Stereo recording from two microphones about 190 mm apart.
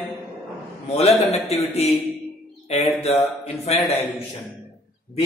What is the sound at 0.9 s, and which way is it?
Speech, 35° left (ahead or behind).